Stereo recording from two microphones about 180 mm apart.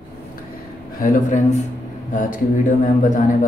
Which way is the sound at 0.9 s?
50° left (ahead or behind).